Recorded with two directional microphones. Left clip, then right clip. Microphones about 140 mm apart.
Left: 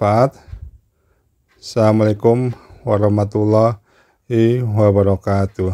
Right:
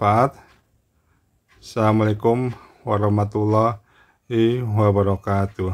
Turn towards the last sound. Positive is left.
turn(degrees=40)  # may be behind; listen again after turning